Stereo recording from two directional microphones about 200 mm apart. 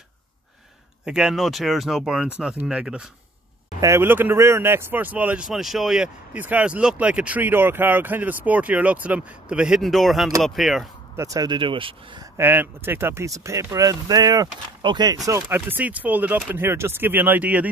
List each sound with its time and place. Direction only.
1.0 s speech: 5° right (ahead or behind)
11.1 s speech: 15° right (ahead or behind)
12.4 s speech: 10° right (ahead or behind)
15.2 s speech: 10° right (ahead or behind)